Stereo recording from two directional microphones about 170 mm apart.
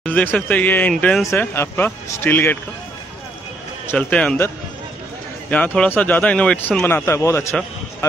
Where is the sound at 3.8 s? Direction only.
10° left (ahead or behind).